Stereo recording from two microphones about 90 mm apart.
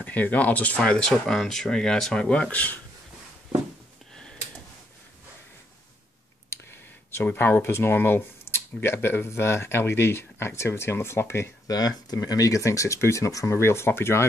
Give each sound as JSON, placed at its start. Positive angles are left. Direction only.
{"t": 0.0, "sound": "speech", "side_deg": 20}
{"t": 6.5, "sound": "a sound", "side_deg": 25}
{"t": 7.3, "sound": "speech", "side_deg": 25}
{"t": 11.6, "sound": "speech", "side_deg": 45}